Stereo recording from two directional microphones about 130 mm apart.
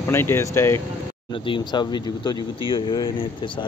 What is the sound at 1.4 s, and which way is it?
Speech, 35° left (ahead or behind).